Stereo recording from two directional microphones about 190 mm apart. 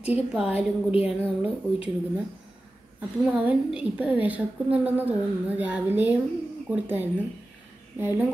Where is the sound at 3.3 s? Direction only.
5° right (ahead or behind).